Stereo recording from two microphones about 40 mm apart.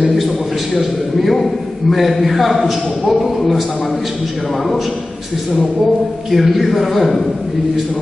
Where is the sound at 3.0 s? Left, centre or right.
Centre.